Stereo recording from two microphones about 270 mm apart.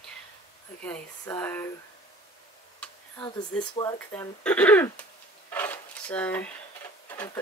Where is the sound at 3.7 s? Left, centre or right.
Centre.